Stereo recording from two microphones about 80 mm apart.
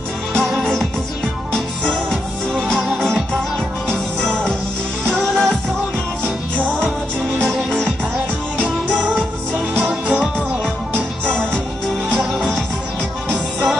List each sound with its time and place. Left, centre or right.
0.3 s music: centre
1.9 s music: centre
6.2 s music: centre
8.5 s music: centre